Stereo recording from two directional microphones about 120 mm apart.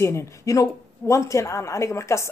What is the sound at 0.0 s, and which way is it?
A woman's voice, 25° left (ahead or behind).